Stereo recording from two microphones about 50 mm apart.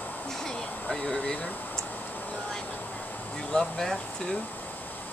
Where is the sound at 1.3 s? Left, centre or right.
Left.